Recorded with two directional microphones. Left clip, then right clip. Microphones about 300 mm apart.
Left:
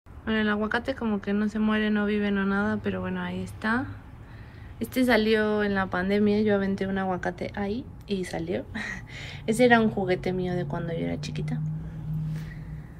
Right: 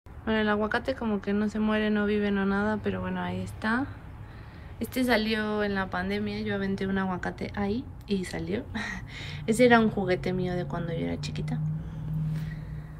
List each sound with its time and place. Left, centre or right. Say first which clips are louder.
0.2 s speech: even; centre